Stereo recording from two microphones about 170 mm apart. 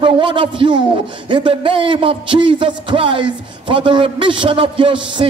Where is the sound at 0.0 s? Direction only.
30° right (ahead or behind).